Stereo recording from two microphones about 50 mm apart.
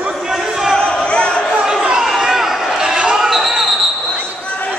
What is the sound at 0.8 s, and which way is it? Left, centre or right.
Crowd, centre.